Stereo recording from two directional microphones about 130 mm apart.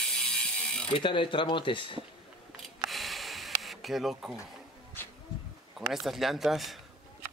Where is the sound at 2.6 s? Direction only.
Centre (ahead or behind).